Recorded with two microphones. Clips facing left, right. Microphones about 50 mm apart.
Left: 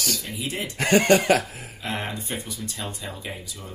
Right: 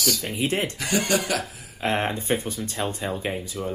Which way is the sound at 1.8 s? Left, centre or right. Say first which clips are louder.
Right 6 dB; right.